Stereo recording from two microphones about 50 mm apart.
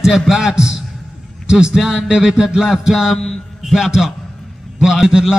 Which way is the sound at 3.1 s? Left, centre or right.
Centre.